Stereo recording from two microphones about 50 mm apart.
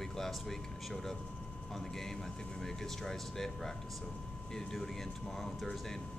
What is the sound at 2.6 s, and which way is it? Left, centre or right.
Speech, centre.